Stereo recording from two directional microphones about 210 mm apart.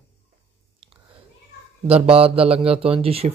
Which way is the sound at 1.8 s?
25° right (ahead or behind).